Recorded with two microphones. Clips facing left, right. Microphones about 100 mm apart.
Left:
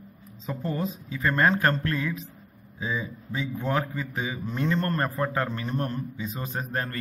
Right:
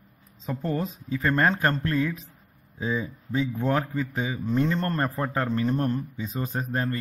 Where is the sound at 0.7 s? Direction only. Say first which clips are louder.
Right 2 dB; 35° right (ahead or behind).